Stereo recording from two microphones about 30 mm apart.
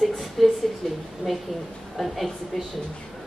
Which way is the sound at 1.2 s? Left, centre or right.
Left.